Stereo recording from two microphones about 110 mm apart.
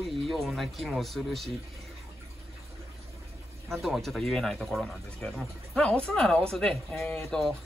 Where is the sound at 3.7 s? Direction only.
Centre (ahead or behind).